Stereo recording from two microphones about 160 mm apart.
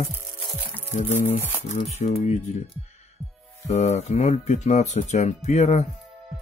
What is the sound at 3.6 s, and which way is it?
Speech, 45° left (ahead or behind).